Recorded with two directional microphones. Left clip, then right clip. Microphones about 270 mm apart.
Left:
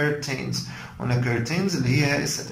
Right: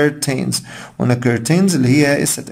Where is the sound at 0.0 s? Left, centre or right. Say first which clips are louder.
Right 8 dB; right.